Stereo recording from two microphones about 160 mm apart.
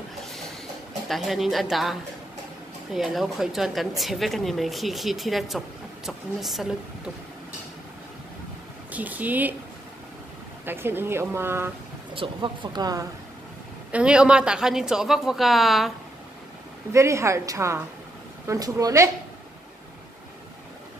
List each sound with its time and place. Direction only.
1.0 s speech: centre (ahead or behind)
8.9 s speech: 10° right (ahead or behind)
10.6 s speech: 15° right (ahead or behind)
12.2 s speech: 30° right (ahead or behind)
13.9 s speech: 5° right (ahead or behind)
16.9 s speech: 20° right (ahead or behind)